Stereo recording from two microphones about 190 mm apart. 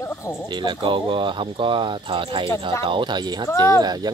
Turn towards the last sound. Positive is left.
turn(degrees=-20)  # may be behind; listen again after turning